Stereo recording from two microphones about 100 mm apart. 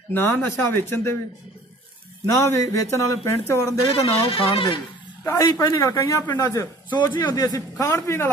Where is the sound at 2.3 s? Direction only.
30° left (ahead or behind).